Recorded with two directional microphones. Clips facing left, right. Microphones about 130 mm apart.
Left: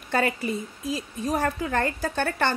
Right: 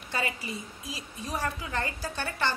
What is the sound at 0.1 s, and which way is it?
A woman's voice, 55° left (ahead or behind).